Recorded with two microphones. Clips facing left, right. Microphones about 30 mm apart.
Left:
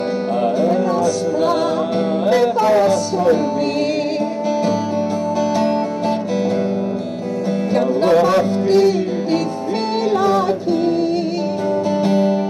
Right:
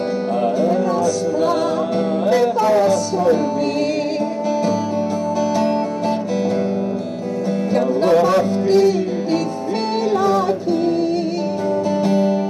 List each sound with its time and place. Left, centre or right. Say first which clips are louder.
0.4 s music: left 1 dB; left
5.6 s music: left 1 dB; left
7.7 s music: left 1 dB; left
12.0 s music: left 1 dB; left